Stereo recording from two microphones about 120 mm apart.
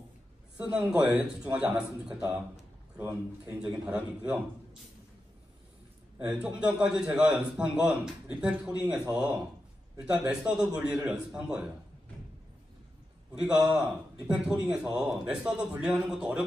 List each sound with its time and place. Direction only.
0.6 s a man's voice: 10° right (ahead or behind)
3.0 s a man's voice: 20° right (ahead or behind)
6.1 s a man's voice: 10° right (ahead or behind)
13.4 s a man's voice: 5° right (ahead or behind)